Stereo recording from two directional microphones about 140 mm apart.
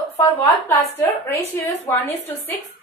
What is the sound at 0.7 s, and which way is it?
Speech, 15° left (ahead or behind).